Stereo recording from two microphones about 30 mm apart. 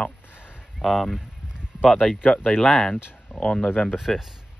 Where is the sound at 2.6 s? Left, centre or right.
Left.